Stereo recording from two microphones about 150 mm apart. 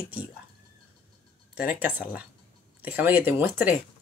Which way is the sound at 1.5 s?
10° right (ahead or behind).